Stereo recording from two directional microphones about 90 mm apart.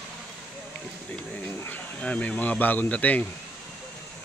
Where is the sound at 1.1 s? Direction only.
20° left (ahead or behind).